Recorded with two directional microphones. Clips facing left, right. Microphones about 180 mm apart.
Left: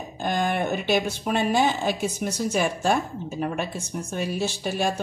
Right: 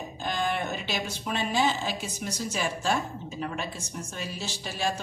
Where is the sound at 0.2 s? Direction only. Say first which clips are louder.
Left 5 dB; 55° left (ahead or behind).